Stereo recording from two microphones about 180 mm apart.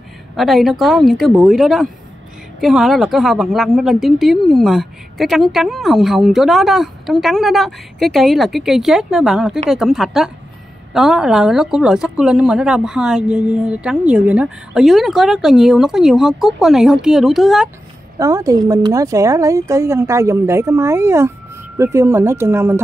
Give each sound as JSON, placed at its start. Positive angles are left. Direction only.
{"t": 0.4, "sound": "a woman's voice", "side_deg": 0}
{"t": 18.2, "sound": "a woman's voice", "side_deg": -20}